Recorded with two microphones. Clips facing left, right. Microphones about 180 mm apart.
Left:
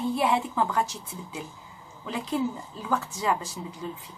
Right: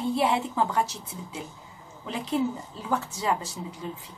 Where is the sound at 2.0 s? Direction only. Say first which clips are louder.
Right 1 dB; 25° right (ahead or behind).